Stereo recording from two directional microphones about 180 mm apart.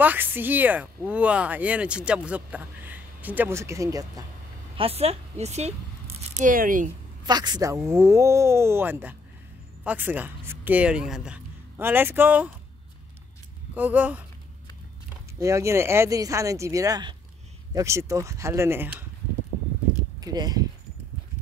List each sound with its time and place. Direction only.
0.0 s speech: 10° right (ahead or behind)
4.7 s speech: 35° right (ahead or behind)
6.3 s speech: 50° right (ahead or behind)
7.2 s a woman's voice: 20° right (ahead or behind)
13.7 s speech: 10° right (ahead or behind)
15.4 s speech: 15° right (ahead or behind)
20.2 s speech: 20° right (ahead or behind)